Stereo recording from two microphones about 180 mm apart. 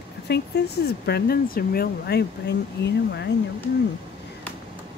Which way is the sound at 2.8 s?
70° left (ahead or behind).